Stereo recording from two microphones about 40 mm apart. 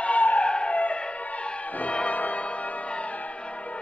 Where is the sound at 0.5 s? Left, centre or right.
Left.